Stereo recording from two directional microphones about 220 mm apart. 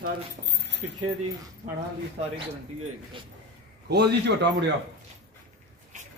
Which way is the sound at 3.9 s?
50° right (ahead or behind).